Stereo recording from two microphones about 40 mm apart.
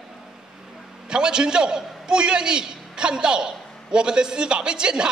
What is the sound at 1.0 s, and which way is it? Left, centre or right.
A man's voice, right.